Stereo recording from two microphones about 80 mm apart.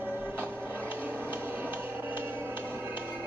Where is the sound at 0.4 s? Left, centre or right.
Right.